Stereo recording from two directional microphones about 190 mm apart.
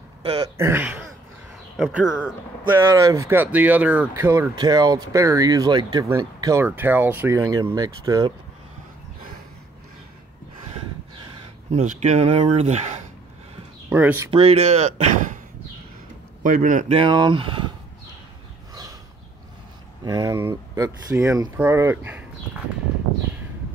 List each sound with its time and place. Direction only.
0.2 s speech: 25° right (ahead or behind)
0.6 s speech: 10° right (ahead or behind)
2.8 s speech: 20° right (ahead or behind)
11.7 s speech: 35° right (ahead or behind)
13.8 s speech: 10° right (ahead or behind)
14.3 s speech: 30° right (ahead or behind)
16.4 s speech: 45° right (ahead or behind)
16.9 s speech: 25° right (ahead or behind)
20.1 s speech: 15° right (ahead or behind)